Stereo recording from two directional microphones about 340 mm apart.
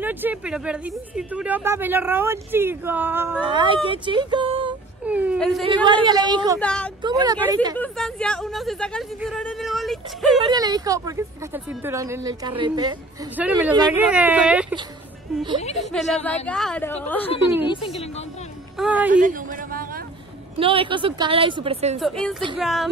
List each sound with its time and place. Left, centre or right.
0.0 s a woman's voice: centre
5.9 s a woman's voice: centre
6.6 s speech: centre
7.0 s a woman's voice: centre
7.7 s speech: centre
10.4 s a woman's voice: centre
15.8 s a woman's voice: centre
18.8 s speech: centre
19.1 s a sound: right
20.5 s a woman's voice: centre
22.0 s speech: centre